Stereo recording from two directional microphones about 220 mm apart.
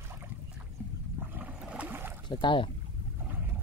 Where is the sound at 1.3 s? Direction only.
5° right (ahead or behind).